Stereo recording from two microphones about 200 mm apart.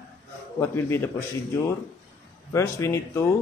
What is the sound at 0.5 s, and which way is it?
Speech, 10° left (ahead or behind).